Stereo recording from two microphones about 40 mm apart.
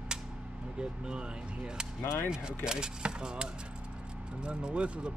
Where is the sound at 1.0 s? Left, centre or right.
Right.